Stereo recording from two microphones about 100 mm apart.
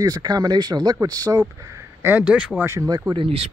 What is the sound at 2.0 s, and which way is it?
Speech, 20° right (ahead or behind).